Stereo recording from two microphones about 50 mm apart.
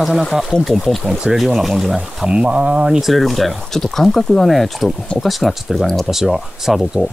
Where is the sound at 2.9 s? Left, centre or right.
Centre.